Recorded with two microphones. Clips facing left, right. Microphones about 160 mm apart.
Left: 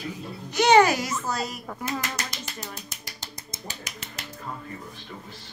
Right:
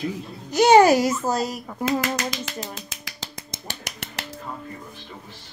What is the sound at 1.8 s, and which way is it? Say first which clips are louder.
Speech: right 9 dB; 90° right.